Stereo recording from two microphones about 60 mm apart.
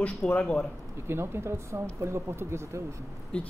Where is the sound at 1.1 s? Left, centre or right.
Right.